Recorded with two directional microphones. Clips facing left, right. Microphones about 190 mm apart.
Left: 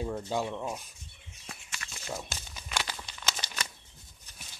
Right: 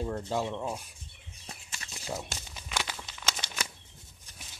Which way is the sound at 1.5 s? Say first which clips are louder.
Left 1 dB; 25° right (ahead or behind).